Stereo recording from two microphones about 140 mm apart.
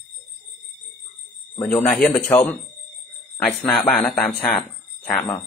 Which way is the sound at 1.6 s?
10° left (ahead or behind).